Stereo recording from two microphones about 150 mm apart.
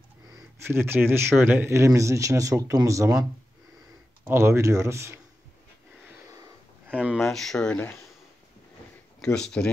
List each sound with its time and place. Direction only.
0.7 s speech: 15° right (ahead or behind)
4.3 s speech: 15° right (ahead or behind)
6.9 s speech: 10° right (ahead or behind); by 8.0 s 10° left (ahead or behind)
9.2 s speech: 5° left (ahead or behind)